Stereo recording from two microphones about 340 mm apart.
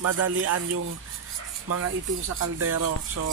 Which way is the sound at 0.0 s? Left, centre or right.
Right.